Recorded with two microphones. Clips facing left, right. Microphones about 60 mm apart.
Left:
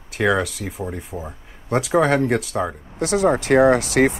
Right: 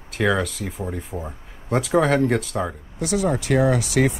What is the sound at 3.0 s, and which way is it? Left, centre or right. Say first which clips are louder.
Speech: left 4 dB; left.